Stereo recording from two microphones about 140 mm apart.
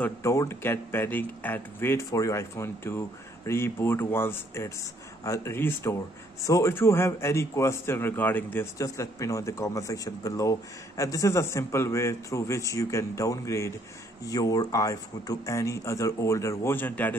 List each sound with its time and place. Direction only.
0.0 s a man's voice: 20° left (ahead or behind)